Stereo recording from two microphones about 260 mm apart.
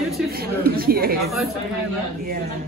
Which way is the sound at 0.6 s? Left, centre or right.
Right.